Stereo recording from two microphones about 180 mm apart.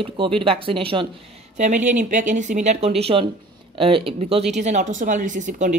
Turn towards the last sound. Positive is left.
turn(degrees=-45)  # may be behind; listen again after turning